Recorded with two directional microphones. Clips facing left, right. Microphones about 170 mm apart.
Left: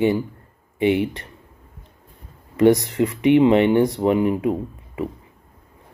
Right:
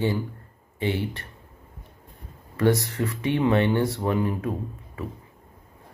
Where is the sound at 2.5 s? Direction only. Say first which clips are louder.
Left 7 dB; 20° left (ahead or behind).